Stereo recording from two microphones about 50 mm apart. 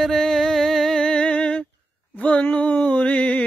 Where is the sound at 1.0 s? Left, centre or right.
Left.